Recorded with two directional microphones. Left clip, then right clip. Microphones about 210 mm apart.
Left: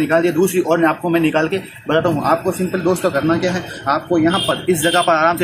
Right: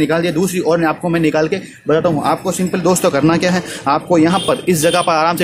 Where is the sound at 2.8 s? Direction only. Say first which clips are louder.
Right 4 dB; 55° right (ahead or behind).